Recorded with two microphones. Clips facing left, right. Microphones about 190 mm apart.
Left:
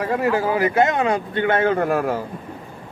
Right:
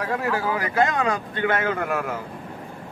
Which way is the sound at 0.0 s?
20° left (ahead or behind).